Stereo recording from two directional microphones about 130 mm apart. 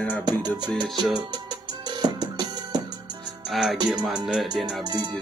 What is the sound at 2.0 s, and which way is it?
Music, 30° right (ahead or behind).